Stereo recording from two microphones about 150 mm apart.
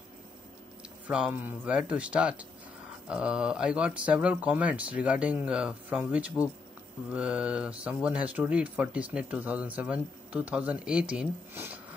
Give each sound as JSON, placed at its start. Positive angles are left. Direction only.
{"t": 1.0, "sound": "speech", "side_deg": -10}
{"t": 11.5, "sound": "speech", "side_deg": -15}